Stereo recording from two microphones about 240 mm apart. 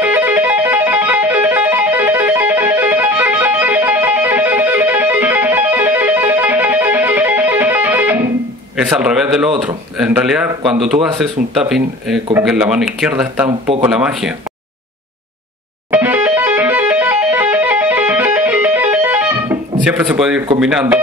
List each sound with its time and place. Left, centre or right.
0.0 s music: centre
8.7 s speech: centre
13.5 s speech: right
13.8 s speech: centre
15.9 s music: centre
20.5 s speech: centre